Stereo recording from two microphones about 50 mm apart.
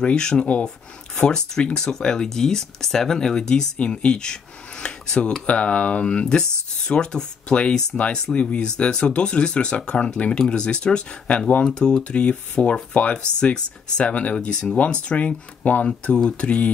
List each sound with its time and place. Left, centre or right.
0.0 s speech: centre
5.5 s speech: left
11.6 s speech: centre